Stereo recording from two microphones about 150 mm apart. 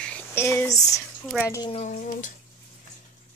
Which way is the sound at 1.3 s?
Centre (ahead or behind).